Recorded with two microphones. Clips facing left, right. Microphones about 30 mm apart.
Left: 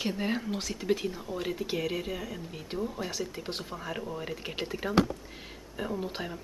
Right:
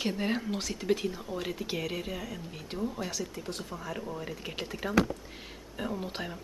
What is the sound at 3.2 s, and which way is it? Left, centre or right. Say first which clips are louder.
Speech: left 2 dB; left.